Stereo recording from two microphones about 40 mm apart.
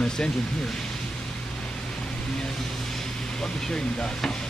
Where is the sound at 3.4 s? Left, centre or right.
Centre.